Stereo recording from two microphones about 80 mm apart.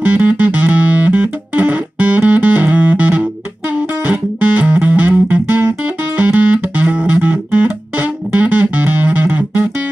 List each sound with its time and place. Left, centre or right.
0.1 s music: centre